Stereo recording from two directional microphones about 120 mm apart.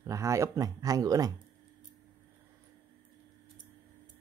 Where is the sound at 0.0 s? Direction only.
25° right (ahead or behind).